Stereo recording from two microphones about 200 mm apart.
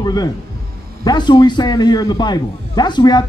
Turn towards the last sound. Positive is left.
turn(degrees=20)  # may be behind; listen again after turning